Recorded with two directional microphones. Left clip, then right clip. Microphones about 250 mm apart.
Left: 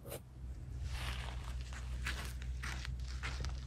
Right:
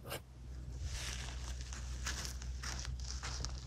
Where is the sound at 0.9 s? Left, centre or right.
Centre.